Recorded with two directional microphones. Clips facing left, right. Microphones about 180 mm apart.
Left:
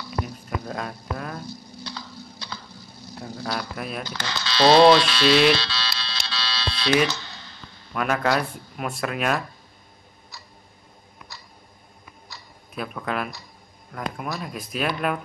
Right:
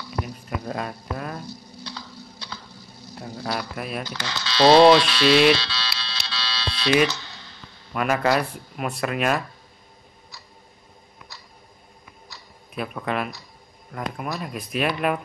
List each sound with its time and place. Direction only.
0.7 s speech: 5° right (ahead or behind)
3.4 s speech: 5° right (ahead or behind)
4.2 s speech: 50° left (ahead or behind)
4.6 s a sound: 10° right (ahead or behind)
5.6 s music: 50° left (ahead or behind)
7.9 s speech: 5° right (ahead or behind)
12.7 s speech: 5° right (ahead or behind)